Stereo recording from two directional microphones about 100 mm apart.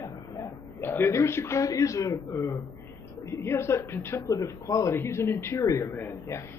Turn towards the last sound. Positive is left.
turn(degrees=20)  # may be behind; listen again after turning